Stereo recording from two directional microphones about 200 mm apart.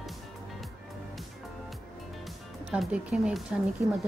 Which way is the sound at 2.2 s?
Centre (ahead or behind).